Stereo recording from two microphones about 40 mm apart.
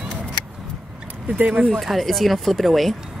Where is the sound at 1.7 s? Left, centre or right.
Centre.